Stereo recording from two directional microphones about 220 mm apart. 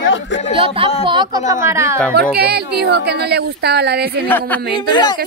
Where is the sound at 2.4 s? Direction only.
45° right (ahead or behind).